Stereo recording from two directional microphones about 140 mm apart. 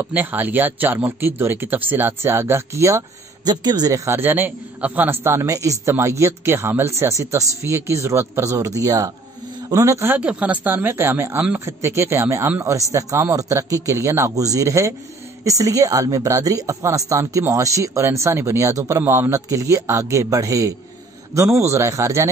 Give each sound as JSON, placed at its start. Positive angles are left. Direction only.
{"t": 0.0, "sound": "speech", "side_deg": -10}